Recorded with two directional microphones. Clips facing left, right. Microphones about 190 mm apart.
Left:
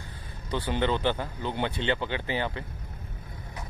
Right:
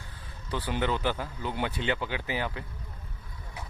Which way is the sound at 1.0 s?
25° left (ahead or behind).